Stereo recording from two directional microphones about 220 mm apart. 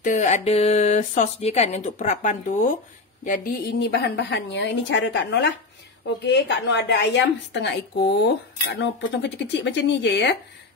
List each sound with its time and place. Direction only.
0.0 s a woman's voice: 35° left (ahead or behind); by 10.3 s 50° left (ahead or behind)